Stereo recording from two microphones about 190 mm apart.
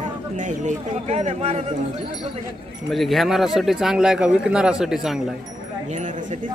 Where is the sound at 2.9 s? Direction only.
Centre (ahead or behind).